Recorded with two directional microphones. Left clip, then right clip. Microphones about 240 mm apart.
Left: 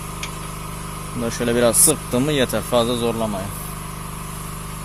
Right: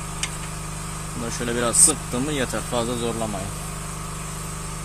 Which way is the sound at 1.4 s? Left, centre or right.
Left.